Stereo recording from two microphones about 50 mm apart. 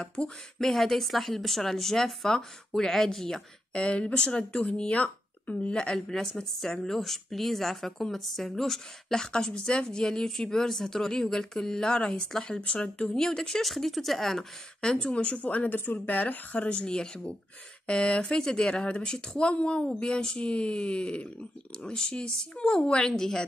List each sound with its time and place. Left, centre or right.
0.0 s speech: centre
0.6 s speech: centre
3.7 s speech: left
12.5 s speech: left